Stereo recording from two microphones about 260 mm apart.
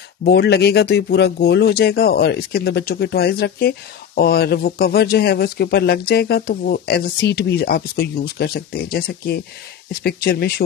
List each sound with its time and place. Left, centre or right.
0.2 s speech: left